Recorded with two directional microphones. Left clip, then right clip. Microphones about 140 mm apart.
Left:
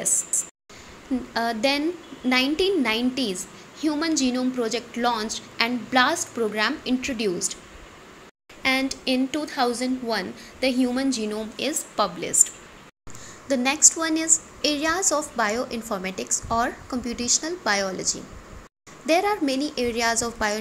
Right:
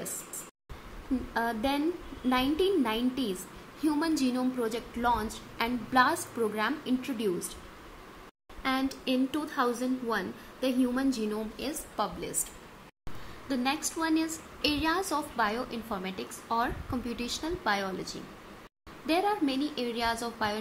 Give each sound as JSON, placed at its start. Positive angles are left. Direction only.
{"t": 1.3, "sound": "a woman's voice", "side_deg": 15}
{"t": 3.8, "sound": "a woman's voice", "side_deg": 0}
{"t": 8.6, "sound": "a woman's voice", "side_deg": 10}
{"t": 11.5, "sound": "a woman's voice", "side_deg": 30}
{"t": 13.5, "sound": "a woman's voice", "side_deg": 35}
{"t": 19.0, "sound": "a woman's voice", "side_deg": 30}